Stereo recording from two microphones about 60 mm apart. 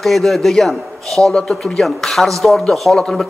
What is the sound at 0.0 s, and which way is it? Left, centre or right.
A man's voice, centre.